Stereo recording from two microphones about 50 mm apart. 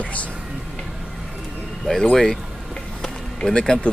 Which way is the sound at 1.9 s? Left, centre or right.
Centre.